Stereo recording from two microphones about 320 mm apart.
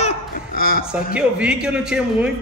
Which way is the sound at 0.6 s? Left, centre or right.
Left.